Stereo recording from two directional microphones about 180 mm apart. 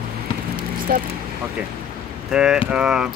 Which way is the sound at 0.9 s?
50° right (ahead or behind).